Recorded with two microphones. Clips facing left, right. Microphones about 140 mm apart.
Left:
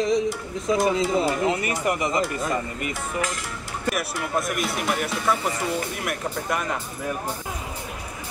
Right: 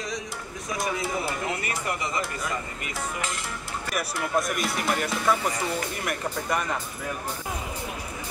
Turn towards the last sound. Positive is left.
turn(degrees=0)  # may be behind; listen again after turning